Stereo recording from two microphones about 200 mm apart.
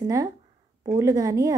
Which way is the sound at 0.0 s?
15° right (ahead or behind).